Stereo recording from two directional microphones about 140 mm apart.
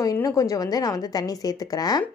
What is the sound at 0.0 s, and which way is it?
A woman's voice, 25° left (ahead or behind).